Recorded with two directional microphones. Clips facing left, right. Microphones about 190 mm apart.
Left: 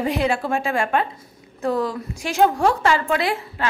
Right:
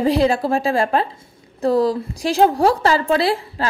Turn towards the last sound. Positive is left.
turn(degrees=-35)  # may be behind; listen again after turning